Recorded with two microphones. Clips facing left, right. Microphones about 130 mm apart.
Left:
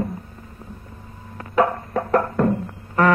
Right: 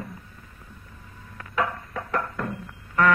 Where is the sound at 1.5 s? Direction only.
40° left (ahead or behind).